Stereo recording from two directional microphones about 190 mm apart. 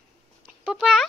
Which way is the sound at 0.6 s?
5° right (ahead or behind).